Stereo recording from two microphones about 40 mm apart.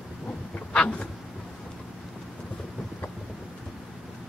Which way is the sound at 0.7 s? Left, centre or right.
Left.